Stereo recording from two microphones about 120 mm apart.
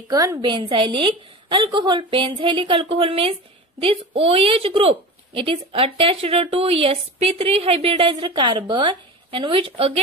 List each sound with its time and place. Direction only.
0.1 s a woman's voice: 30° right (ahead or behind)
0.4 s a woman's voice: 40° right (ahead or behind)